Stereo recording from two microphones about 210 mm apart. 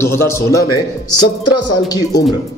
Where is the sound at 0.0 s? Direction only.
10° left (ahead or behind).